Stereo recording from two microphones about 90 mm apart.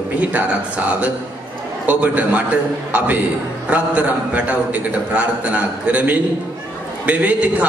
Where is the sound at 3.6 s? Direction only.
15° right (ahead or behind).